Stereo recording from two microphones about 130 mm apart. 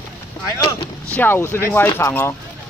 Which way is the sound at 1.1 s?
15° left (ahead or behind).